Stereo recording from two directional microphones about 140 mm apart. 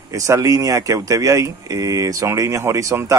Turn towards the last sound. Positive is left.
turn(degrees=-20)  # may be behind; listen again after turning